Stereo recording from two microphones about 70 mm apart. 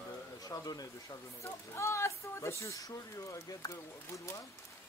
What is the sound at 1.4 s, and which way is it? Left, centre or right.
Speech, left.